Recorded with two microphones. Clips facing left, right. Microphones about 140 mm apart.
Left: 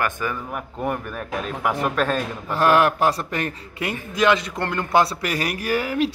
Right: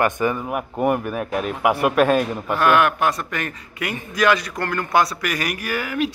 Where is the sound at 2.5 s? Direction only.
30° left (ahead or behind).